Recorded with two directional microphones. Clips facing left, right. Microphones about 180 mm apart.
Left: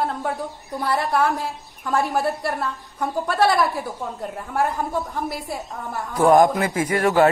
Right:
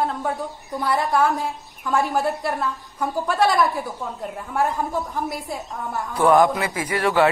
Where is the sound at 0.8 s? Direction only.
60° left (ahead or behind).